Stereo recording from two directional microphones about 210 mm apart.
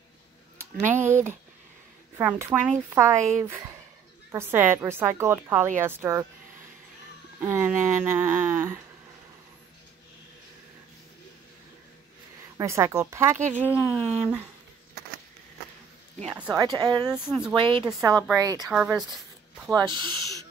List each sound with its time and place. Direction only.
0.6 s speech: 10° right (ahead or behind)
2.1 s a woman's voice: 10° right (ahead or behind)
7.4 s a woman's voice: 10° right (ahead or behind)
12.5 s a woman's voice: 15° right (ahead or behind)
13.7 s speech: 15° left (ahead or behind)
16.3 s a woman's voice: 15° right (ahead or behind)
17.1 s speech: 5° right (ahead or behind)
17.6 s a woman's voice: 25° right (ahead or behind)
18.7 s speech: 5° right (ahead or behind)
19.7 s a woman's voice: 20° right (ahead or behind)